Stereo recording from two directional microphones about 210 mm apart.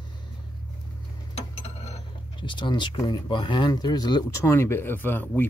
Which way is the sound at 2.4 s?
20° left (ahead or behind).